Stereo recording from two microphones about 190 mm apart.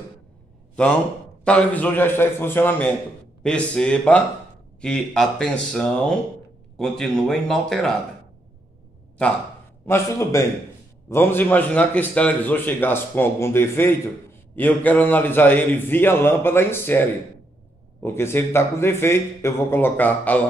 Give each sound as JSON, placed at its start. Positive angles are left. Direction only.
{"t": 0.8, "sound": "a man's voice", "side_deg": 5}
{"t": 9.8, "sound": "a man's voice", "side_deg": 15}
{"t": 18.0, "sound": "a man's voice", "side_deg": 15}